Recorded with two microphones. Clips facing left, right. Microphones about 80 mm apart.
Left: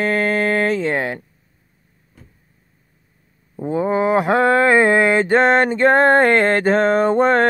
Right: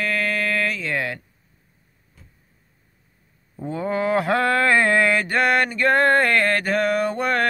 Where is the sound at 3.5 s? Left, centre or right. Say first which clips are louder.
Left 6 dB; centre.